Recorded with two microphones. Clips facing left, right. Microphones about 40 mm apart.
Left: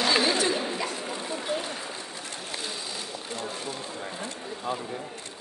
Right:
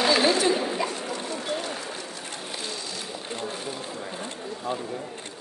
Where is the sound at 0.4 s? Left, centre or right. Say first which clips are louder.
Right 3 dB; centre.